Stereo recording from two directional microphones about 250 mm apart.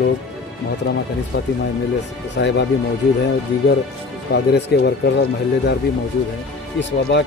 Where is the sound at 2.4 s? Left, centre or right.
Left.